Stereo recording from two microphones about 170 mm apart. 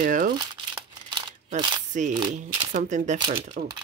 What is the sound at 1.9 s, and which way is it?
Speech, 45° right (ahead or behind).